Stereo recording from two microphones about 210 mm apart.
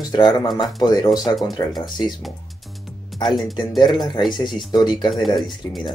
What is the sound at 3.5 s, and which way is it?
Speech, 20° left (ahead or behind).